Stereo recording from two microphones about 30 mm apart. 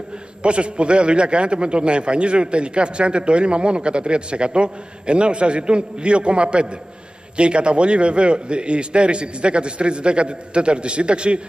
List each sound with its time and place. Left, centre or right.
0.4 s a man's voice: right